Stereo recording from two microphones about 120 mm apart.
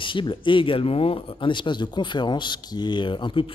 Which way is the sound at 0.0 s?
45° left (ahead or behind).